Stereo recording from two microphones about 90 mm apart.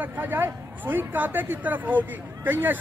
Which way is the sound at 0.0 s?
20° right (ahead or behind).